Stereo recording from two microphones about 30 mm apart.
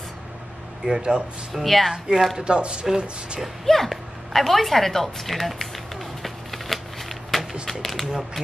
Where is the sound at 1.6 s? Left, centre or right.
Centre.